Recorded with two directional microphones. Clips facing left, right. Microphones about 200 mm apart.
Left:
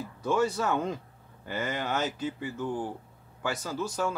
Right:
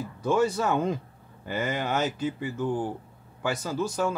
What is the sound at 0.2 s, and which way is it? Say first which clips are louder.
A man's voice: right 3 dB; 15° right (ahead or behind).